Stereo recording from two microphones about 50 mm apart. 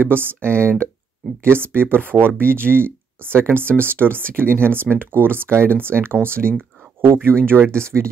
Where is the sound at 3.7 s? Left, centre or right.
Left.